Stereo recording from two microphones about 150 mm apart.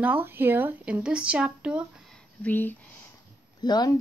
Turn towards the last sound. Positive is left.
turn(degrees=25)  # may be behind; listen again after turning